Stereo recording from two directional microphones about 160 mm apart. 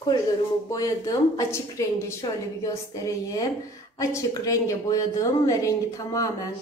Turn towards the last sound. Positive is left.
turn(degrees=20)  # may be behind; listen again after turning